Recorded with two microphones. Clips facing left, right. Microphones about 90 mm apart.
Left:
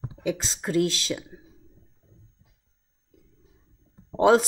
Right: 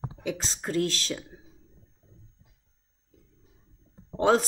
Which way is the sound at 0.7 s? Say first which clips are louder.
Left 4 dB; 10° left (ahead or behind).